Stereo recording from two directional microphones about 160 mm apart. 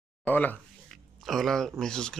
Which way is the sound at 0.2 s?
10° left (ahead or behind).